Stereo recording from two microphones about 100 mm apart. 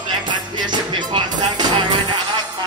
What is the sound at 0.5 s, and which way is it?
Music, 45° right (ahead or behind).